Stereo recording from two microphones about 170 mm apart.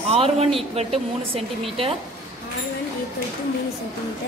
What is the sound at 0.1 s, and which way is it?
A man's voice, 35° right (ahead or behind).